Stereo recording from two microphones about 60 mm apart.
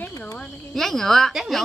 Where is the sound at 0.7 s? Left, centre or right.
Centre.